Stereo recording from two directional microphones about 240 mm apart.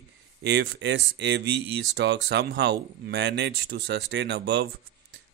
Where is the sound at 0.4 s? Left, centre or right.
Right.